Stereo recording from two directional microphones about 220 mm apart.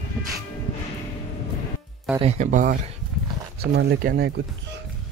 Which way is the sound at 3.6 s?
45° right (ahead or behind).